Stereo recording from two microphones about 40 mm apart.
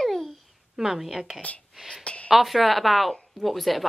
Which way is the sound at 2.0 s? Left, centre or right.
Left.